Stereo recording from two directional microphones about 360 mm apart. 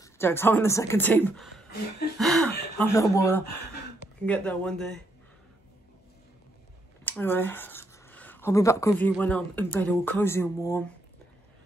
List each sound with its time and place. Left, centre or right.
0.0 s speech: centre
7.1 s speech: centre